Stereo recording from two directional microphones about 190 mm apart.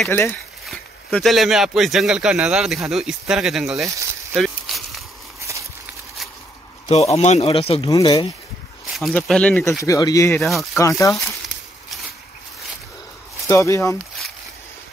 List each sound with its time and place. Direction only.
0.1 s speech: 15° left (ahead or behind)
0.7 s speech: centre (ahead or behind)
3.8 s snake: 15° right (ahead or behind)
4.4 s a sound: centre (ahead or behind)
5.5 s a sound: 15° right (ahead or behind)
7.2 s speech: 35° left (ahead or behind)
8.9 s speech: centre (ahead or behind)
9.8 s speech: 20° left (ahead or behind)
10.4 s speech: centre (ahead or behind)
10.8 s speech: 15° left (ahead or behind)
13.5 s speech: 15° left (ahead or behind)